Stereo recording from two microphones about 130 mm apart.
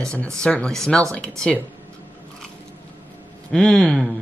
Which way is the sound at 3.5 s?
5° left (ahead or behind).